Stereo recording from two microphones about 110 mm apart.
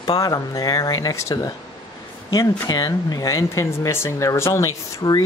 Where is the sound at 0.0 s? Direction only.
35° left (ahead or behind).